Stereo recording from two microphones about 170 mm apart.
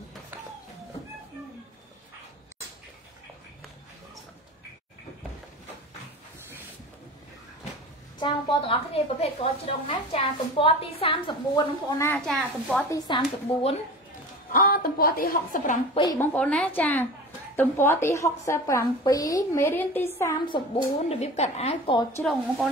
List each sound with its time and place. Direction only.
8.2 s a woman's voice: 30° left (ahead or behind)
12.3 s a woman's voice: centre (ahead or behind)
12.9 s speech: 25° left (ahead or behind)
14.5 s a woman's voice: 60° left (ahead or behind)
16.0 s speech: 20° left (ahead or behind)
16.3 s a woman's voice: 5° left (ahead or behind)
20.4 s a woman's voice: 30° left (ahead or behind)